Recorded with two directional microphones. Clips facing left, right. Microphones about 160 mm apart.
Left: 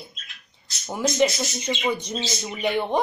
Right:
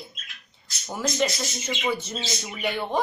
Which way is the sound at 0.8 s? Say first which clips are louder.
Left 4 dB; 15° left (ahead or behind).